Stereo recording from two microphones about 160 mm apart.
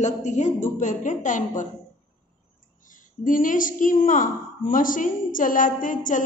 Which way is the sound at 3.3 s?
55° left (ahead or behind).